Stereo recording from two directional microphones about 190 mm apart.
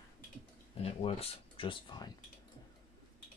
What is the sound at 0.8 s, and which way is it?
Speech, 30° left (ahead or behind).